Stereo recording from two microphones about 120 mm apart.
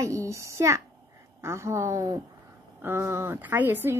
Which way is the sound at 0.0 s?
25° right (ahead or behind).